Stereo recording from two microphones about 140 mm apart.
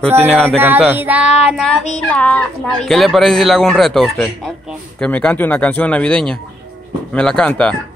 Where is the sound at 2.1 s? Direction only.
10° left (ahead or behind).